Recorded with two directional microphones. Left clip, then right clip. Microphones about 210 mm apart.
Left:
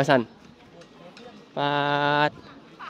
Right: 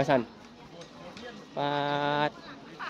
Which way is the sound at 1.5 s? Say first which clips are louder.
Left 5 dB; 50° left (ahead or behind).